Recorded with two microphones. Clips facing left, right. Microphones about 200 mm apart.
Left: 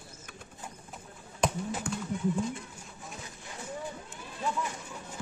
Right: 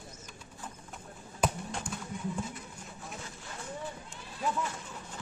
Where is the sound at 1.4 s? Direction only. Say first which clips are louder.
Left 1 dB; 5° right (ahead or behind).